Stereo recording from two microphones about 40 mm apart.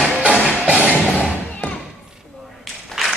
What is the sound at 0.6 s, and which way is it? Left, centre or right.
Music, right.